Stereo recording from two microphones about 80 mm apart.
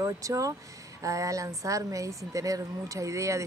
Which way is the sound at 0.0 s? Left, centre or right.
Right.